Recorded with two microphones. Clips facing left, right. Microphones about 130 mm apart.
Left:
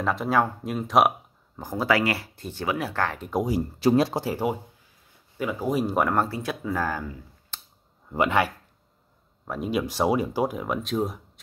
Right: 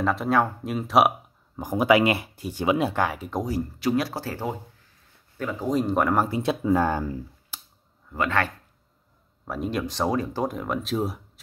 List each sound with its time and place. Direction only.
0.0 s speech: centre (ahead or behind)
1.6 s speech: 15° right (ahead or behind)
3.2 s speech: 5° left (ahead or behind)
3.8 s speech: 30° left (ahead or behind)
4.1 s speech: 15° left (ahead or behind)
6.1 s speech: 15° right (ahead or behind)
7.5 s a sound: 10° right (ahead or behind)
8.1 s speech: 15° left (ahead or behind)
9.4 s speech: centre (ahead or behind)